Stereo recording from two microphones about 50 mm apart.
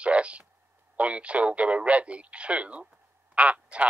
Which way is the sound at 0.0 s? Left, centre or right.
Right.